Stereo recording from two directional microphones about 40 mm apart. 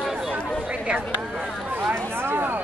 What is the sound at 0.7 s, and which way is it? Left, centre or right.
Speech, right.